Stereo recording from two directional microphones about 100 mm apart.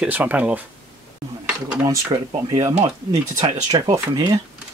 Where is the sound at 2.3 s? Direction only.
50° right (ahead or behind).